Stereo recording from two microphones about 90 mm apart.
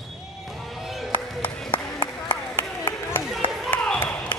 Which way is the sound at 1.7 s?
55° left (ahead or behind).